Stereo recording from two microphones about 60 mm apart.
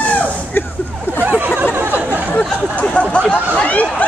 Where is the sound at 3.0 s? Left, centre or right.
Left.